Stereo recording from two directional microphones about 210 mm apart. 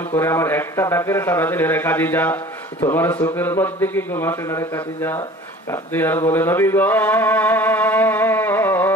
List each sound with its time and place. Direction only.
0.1 s speech: 10° left (ahead or behind)